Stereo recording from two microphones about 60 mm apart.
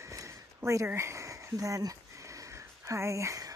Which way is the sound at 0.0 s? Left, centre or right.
Right.